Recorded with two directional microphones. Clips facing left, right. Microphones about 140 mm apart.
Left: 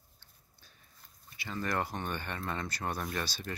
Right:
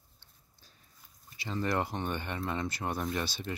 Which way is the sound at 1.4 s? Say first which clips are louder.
Right 3 dB; 25° right (ahead or behind).